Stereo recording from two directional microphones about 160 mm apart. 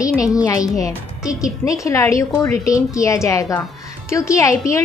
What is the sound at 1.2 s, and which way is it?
A woman's voice, 20° left (ahead or behind).